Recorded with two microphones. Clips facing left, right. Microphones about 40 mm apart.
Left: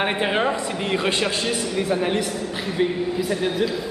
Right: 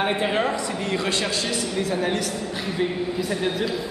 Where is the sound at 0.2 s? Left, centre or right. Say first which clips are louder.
Left 1 dB; left.